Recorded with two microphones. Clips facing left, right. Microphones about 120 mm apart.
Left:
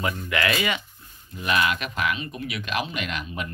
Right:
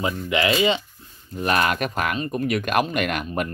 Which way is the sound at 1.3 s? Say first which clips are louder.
Right 3 dB; 45° right (ahead or behind).